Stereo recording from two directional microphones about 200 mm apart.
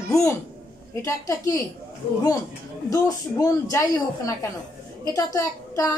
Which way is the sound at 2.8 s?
15° left (ahead or behind).